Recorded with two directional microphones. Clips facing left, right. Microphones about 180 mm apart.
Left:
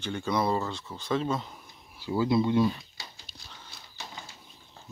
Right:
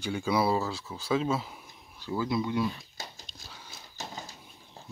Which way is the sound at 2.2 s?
25° left (ahead or behind).